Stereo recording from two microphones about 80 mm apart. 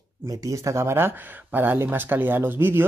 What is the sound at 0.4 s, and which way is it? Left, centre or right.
Speech, right.